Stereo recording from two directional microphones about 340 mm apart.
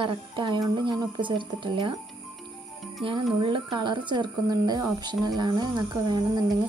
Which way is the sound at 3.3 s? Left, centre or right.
Centre.